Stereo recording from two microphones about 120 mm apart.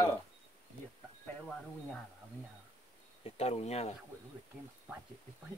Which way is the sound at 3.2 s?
60° left (ahead or behind).